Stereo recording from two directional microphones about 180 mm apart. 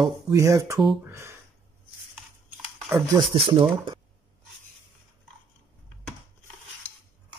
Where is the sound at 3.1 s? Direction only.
30° right (ahead or behind).